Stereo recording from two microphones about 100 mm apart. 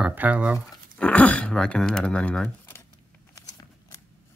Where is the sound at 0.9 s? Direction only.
15° left (ahead or behind).